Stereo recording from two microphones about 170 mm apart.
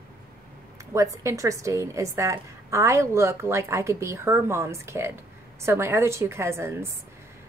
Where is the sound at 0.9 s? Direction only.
20° right (ahead or behind).